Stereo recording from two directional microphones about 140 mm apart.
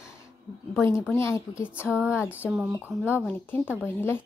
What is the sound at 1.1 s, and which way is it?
Speech, 20° left (ahead or behind).